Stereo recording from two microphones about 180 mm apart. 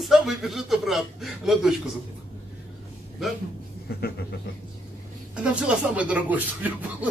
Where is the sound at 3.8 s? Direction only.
60° left (ahead or behind).